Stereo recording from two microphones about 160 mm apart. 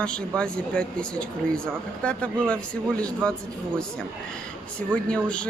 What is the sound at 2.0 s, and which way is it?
Speech, 5° left (ahead or behind).